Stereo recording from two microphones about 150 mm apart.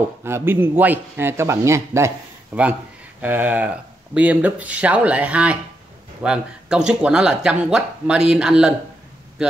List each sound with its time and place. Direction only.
0.2 s speech: 15° right (ahead or behind)